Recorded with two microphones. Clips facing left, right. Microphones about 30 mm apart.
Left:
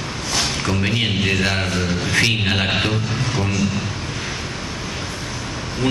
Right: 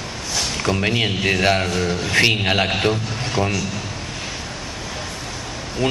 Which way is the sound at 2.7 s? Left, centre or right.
Centre.